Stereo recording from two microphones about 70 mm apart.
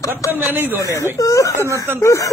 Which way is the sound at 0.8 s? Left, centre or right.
Left.